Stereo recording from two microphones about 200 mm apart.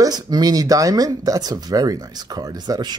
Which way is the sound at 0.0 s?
20° right (ahead or behind).